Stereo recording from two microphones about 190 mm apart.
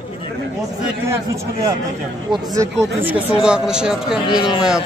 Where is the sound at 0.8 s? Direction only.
15° right (ahead or behind).